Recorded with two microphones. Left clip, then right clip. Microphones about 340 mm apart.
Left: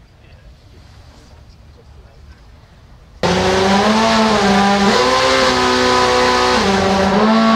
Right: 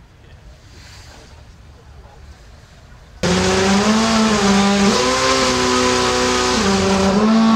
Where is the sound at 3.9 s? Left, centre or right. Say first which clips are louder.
Left 3 dB; left.